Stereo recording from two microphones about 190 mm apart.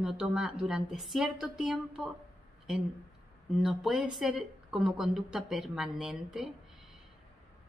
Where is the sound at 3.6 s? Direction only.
Centre (ahead or behind).